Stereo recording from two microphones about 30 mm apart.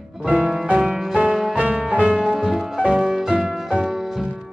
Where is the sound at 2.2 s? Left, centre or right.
Centre.